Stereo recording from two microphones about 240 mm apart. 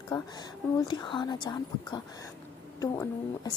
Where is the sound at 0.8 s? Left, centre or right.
Centre.